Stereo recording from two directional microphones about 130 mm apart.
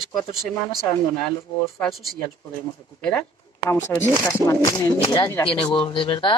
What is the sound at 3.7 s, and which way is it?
Speech, 20° left (ahead or behind).